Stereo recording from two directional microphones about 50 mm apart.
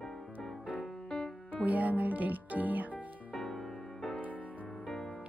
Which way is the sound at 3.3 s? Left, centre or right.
Centre.